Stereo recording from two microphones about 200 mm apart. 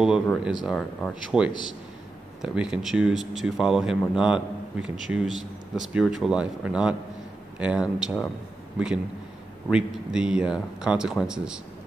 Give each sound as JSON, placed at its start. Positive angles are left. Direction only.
{"t": 0.0, "sound": "speech", "side_deg": -5}
{"t": 1.5, "sound": "a man's voice", "side_deg": 20}
{"t": 2.4, "sound": "a man's voice", "side_deg": -5}